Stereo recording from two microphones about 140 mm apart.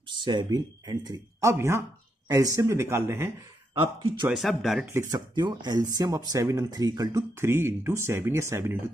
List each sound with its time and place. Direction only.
0.2 s speech: 35° right (ahead or behind); by 3.3 s 15° right (ahead or behind)
3.8 s speech: 35° right (ahead or behind)
4.3 s speech: centre (ahead or behind)
5.1 s speech: 30° right (ahead or behind)